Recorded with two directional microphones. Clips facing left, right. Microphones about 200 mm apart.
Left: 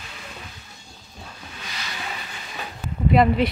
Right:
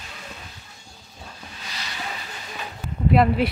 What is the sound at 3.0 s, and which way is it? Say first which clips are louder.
Speech: left 1 dB; 5° right (ahead or behind).